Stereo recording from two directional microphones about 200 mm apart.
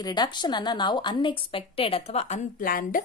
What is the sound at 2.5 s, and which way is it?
Speech, 45° left (ahead or behind).